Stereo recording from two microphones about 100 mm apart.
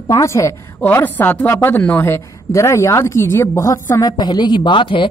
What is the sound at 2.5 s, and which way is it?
A woman's voice, 30° left (ahead or behind).